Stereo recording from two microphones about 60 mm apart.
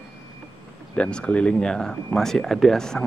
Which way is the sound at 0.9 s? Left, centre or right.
Centre.